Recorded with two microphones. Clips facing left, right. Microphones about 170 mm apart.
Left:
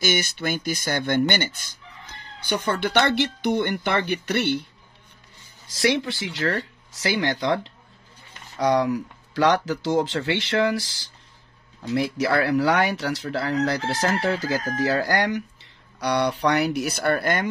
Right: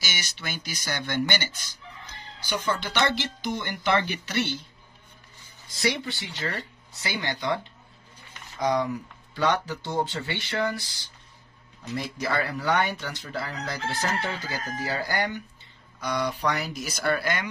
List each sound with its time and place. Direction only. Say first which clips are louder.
0.0 s speech: left 12 dB; 50° left (ahead or behind)
5.7 s speech: left 6 dB; 90° left; by 17.5 s 50° left (ahead or behind)